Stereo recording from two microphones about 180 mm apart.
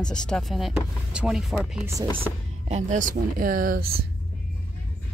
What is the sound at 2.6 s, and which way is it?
Speech, 40° right (ahead or behind).